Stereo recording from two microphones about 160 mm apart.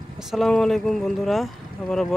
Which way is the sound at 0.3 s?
Centre (ahead or behind).